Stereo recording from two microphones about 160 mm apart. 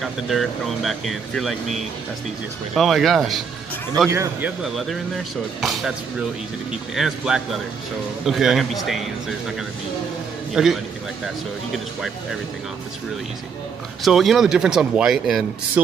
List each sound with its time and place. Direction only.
0.0 s speech: centre (ahead or behind)
4.1 s speech: 20° right (ahead or behind)
4.7 s speech: centre (ahead or behind)
10.5 s a man's voice: centre (ahead or behind)
14.0 s speech: centre (ahead or behind)